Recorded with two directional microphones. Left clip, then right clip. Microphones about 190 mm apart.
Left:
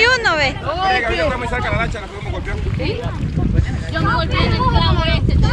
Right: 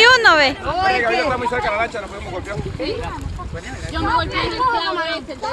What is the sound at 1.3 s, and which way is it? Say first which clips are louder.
Speech: right 1 dB; 5° left (ahead or behind).